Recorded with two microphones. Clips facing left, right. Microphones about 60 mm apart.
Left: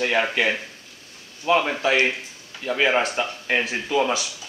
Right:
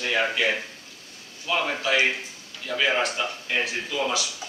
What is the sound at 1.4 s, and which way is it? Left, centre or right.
Speech, left.